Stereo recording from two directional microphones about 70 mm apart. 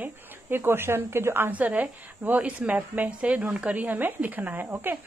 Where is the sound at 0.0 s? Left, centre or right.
Right.